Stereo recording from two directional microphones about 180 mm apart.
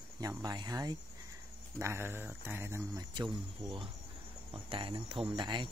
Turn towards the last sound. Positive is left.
turn(degrees=-25)  # may be behind; listen again after turning